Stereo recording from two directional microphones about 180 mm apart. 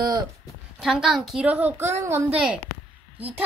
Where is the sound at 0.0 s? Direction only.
20° right (ahead or behind).